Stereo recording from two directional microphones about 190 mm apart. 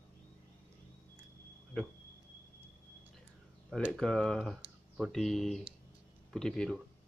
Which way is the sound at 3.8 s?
Centre (ahead or behind).